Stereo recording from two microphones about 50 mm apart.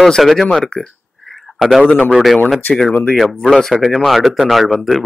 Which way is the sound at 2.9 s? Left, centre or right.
Left.